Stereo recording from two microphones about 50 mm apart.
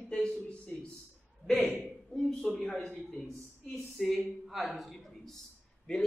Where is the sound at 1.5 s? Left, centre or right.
Centre.